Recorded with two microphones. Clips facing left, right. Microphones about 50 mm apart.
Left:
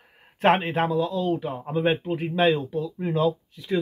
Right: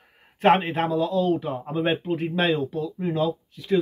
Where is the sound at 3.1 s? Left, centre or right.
Centre.